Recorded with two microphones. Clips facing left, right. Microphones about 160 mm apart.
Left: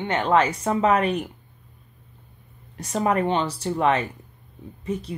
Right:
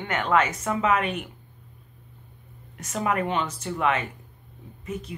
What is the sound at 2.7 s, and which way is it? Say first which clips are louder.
Speech: left 4 dB; 35° left (ahead or behind).